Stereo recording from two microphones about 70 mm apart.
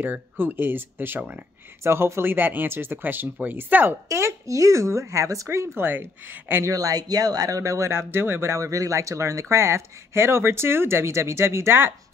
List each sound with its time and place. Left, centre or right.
0.0 s speech: right
4.1 s speech: right
5.8 s speech: right
6.6 s speech: right